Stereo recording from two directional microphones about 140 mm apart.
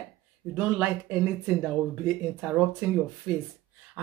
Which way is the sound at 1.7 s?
5° right (ahead or behind).